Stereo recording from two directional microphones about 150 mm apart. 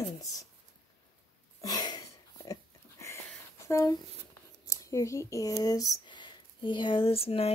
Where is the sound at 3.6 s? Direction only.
20° left (ahead or behind).